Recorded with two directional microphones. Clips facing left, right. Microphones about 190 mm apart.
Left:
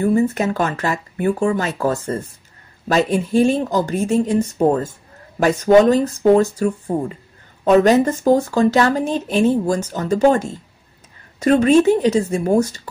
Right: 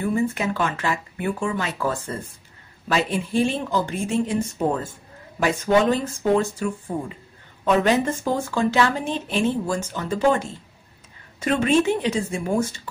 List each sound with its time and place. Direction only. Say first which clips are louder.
0.0 s speech: left 6 dB; 40° left (ahead or behind)